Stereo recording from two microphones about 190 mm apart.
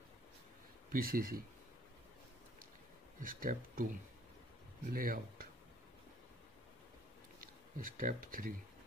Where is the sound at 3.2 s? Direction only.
45° right (ahead or behind).